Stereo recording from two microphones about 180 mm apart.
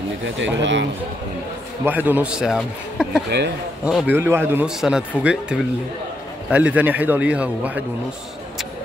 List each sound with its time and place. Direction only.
0.6 s a man's voice: 90° right
1.9 s a man's voice: 10° right (ahead or behind)